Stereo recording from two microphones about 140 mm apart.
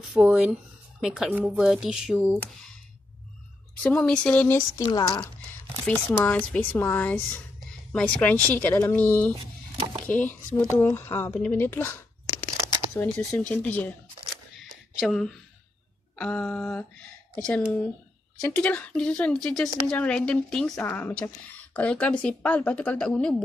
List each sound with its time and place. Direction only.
0.1 s speech: 5° right (ahead or behind)
3.8 s a woman's voice: 5° left (ahead or behind)
4.6 s speech: 25° left (ahead or behind)
5.9 s a woman's voice: 10° left (ahead or behind)
12.9 s a sound: 10° left (ahead or behind)
16.2 s a woman's voice: 10° left (ahead or behind)